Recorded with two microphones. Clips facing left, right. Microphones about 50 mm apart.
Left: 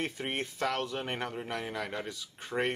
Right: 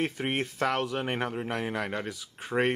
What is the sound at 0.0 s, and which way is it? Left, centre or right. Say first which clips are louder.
Speech: right 5 dB; centre.